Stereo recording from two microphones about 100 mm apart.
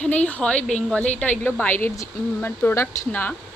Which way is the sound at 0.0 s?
15° left (ahead or behind).